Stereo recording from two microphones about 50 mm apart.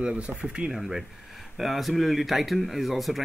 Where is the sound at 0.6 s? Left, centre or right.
Centre.